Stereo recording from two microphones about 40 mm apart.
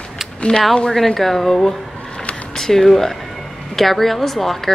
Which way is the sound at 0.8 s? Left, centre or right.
Centre.